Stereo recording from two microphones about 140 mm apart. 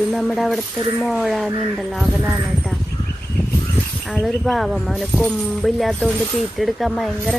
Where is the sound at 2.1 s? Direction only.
15° right (ahead or behind).